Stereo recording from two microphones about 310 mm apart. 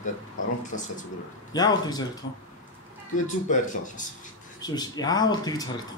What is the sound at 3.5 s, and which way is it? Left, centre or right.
Speech, left.